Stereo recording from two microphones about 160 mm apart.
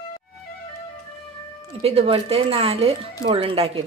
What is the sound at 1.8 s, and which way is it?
Speech, 40° right (ahead or behind).